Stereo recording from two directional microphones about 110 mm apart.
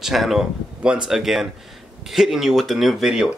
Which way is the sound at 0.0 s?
Centre (ahead or behind).